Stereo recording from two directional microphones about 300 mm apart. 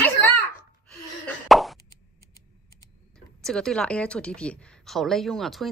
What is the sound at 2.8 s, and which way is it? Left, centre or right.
Speech, centre.